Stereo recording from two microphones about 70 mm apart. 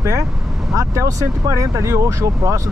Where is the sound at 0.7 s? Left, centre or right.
Right.